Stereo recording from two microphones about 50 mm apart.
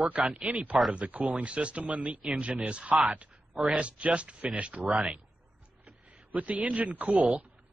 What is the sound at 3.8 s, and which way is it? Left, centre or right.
Speech, right.